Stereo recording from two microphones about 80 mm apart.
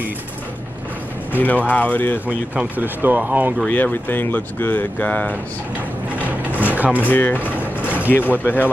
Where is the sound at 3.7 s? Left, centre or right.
Left.